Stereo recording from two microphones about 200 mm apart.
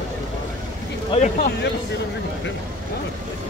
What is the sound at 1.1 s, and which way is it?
Speech, 35° left (ahead or behind).